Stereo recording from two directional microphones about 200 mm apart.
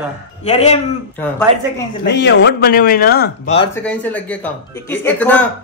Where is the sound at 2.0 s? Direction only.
60° left (ahead or behind).